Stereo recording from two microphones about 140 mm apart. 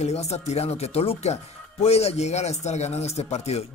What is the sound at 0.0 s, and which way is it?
Speech, 50° left (ahead or behind).